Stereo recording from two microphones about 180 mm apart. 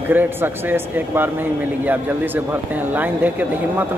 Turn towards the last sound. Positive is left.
turn(degrees=-10)  # may be behind; listen again after turning